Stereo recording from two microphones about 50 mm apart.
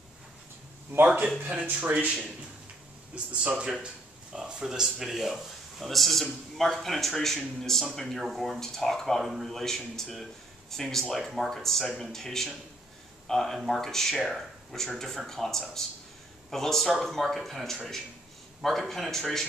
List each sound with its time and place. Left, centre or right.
1.6 s speech: right
2.0 s a man's voice: right
3.4 s speech: centre